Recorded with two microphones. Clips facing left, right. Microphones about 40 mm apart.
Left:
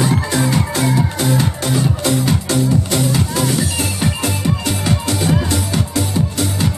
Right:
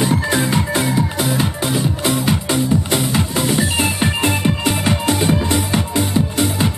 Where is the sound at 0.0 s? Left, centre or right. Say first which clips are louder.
Even; right.